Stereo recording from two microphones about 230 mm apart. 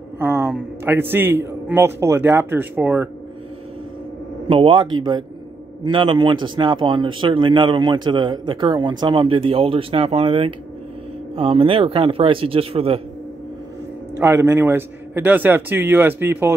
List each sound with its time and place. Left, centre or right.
0.2 s a man's voice: centre
4.5 s speech: right
14.1 s a man's voice: centre